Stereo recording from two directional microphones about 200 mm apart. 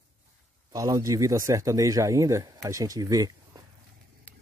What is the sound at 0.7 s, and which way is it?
Speech, 15° right (ahead or behind).